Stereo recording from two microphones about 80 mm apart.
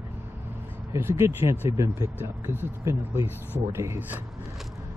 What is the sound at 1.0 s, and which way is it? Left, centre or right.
Speech, right.